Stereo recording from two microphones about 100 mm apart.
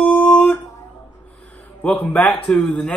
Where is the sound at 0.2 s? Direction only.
15° left (ahead or behind).